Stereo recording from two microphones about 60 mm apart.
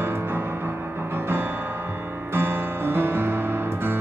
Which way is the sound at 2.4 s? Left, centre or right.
Right.